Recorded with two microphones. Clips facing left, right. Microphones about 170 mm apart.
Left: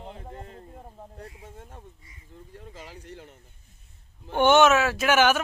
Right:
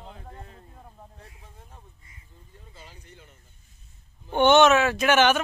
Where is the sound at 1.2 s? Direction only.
65° left (ahead or behind).